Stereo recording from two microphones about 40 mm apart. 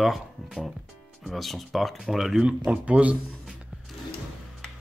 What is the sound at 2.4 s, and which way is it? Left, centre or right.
Speech, right.